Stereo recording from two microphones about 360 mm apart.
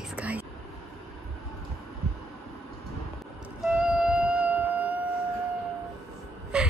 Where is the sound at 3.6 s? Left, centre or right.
Centre.